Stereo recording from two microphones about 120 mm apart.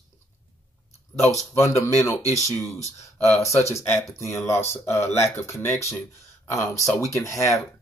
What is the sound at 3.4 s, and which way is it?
Speech, 25° left (ahead or behind).